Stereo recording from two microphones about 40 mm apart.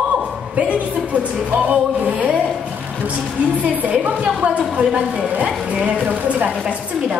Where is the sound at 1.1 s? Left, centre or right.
Right.